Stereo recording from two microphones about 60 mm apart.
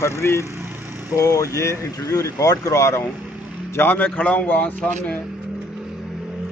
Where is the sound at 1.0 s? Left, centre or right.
Left.